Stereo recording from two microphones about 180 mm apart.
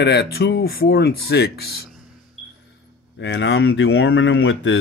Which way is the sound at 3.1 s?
85° left.